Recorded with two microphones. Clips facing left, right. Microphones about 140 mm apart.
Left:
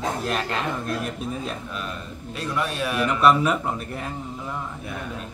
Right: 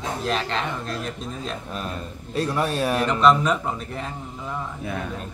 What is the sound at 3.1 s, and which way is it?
A man's voice, 5° left (ahead or behind).